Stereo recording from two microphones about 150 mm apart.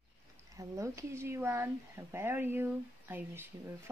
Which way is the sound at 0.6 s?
20° right (ahead or behind).